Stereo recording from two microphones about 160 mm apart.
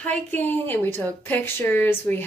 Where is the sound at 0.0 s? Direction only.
10° left (ahead or behind).